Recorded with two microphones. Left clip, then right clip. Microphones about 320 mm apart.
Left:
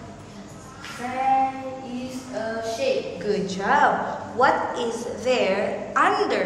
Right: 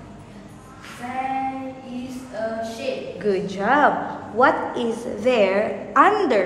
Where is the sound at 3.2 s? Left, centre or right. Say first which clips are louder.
Right 4 dB; right.